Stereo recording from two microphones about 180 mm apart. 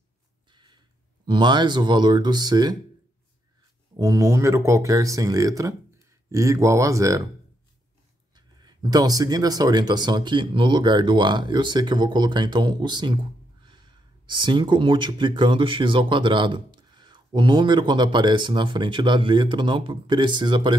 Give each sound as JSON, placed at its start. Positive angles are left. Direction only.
{"t": 0.5, "sound": "a sound", "side_deg": -25}
{"t": 1.2, "sound": "speech", "side_deg": -25}
{"t": 3.9, "sound": "speech", "side_deg": -20}
{"t": 8.4, "sound": "speech", "side_deg": -25}